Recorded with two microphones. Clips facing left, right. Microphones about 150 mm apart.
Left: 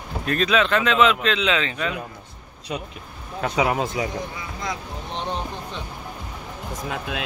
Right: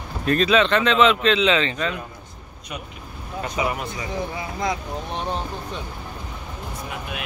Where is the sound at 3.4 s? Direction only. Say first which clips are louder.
Left 4 dB; 90° left.